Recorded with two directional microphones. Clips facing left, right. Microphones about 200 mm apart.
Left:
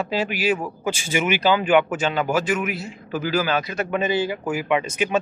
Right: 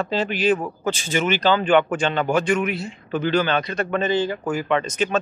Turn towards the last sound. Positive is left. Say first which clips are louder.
# even
turn(degrees=10)  # may be behind; listen again after turning